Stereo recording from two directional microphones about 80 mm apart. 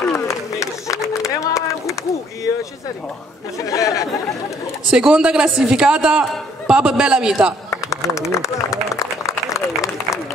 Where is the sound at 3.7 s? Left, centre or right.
Left.